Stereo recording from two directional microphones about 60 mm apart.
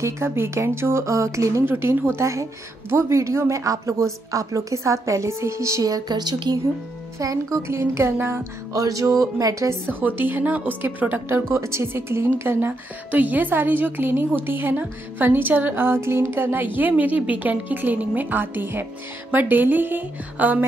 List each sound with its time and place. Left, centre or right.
0.0 s speech: right
1.7 s a woman's voice: right
7.5 s speech: right
8.7 s speech: right
9.8 s a woman's voice: right
11.2 s speech: right
12.4 s a woman's voice: right